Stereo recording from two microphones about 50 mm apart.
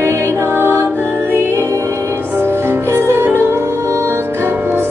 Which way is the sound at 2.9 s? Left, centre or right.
Right.